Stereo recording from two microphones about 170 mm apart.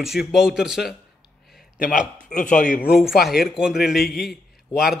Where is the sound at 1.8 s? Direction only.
50° left (ahead or behind).